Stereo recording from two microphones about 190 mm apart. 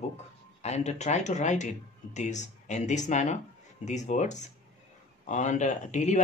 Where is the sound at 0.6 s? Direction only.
35° left (ahead or behind).